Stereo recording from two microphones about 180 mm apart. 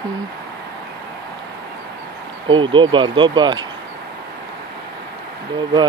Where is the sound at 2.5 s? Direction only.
25° right (ahead or behind).